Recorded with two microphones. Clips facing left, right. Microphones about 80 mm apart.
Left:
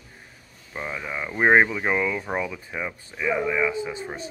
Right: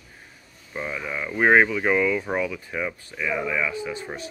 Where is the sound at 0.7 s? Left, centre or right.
Centre.